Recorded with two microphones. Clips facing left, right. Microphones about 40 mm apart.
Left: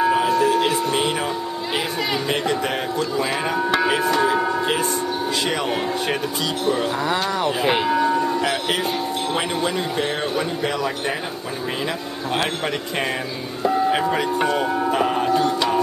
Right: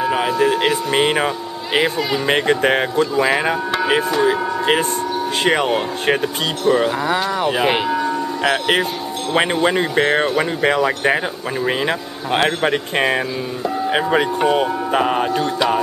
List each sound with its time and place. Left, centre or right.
0.4 s a sound: right
1.8 s speech: right
5.4 s speech: right
7.4 s speech: centre
7.9 s livestock: centre
8.5 s speech: right
12.4 s speech: right
14.5 s speech: right